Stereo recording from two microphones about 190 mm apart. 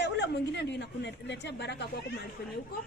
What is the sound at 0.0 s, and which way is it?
A woman's voice, 65° left (ahead or behind).